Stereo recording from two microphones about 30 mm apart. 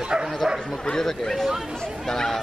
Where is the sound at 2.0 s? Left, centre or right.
Centre.